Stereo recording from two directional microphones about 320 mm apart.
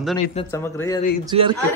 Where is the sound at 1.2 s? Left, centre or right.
Centre.